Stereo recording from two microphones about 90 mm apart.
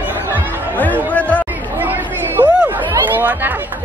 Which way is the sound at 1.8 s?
20° right (ahead or behind).